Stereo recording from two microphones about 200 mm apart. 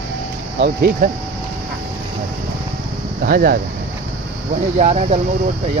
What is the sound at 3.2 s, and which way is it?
Speech, 45° right (ahead or behind).